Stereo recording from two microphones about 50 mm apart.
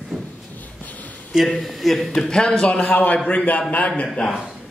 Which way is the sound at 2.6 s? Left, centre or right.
Centre.